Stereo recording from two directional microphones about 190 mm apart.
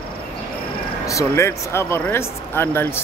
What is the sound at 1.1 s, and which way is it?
Speech, 15° left (ahead or behind).